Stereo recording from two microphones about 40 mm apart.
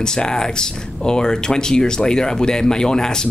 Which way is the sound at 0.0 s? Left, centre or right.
Centre.